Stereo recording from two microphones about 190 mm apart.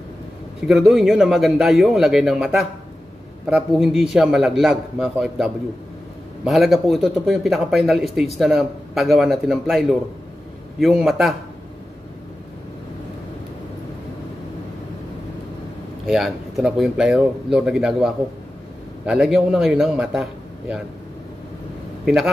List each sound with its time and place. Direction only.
0.7 s speech: centre (ahead or behind)
16.1 s speech: 5° right (ahead or behind)
22.0 s a man's voice: 5° right (ahead or behind)